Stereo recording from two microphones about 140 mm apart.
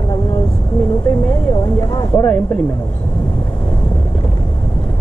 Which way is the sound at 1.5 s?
30° left (ahead or behind).